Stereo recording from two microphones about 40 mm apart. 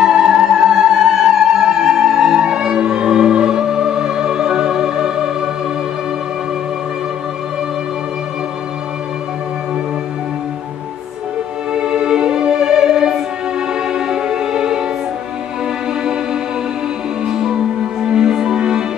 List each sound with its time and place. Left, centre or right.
0.0 s music: centre
11.7 s music: right